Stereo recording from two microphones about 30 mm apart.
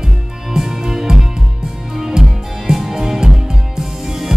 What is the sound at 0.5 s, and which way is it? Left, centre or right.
Music, centre.